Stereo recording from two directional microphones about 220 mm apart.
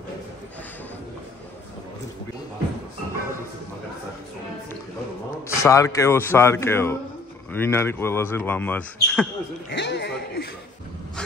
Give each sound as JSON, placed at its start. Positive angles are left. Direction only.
{"t": 5.6, "sound": "speech", "side_deg": 15}
{"t": 9.7, "sound": "speech", "side_deg": 50}